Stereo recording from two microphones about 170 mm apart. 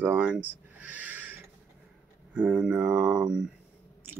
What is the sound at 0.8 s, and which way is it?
Owl, 10° right (ahead or behind).